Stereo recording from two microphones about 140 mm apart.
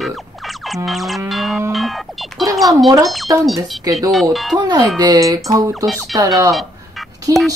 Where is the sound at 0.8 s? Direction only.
Centre (ahead or behind).